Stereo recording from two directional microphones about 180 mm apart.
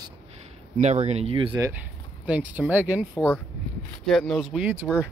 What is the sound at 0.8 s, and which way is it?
Speech, 40° right (ahead or behind).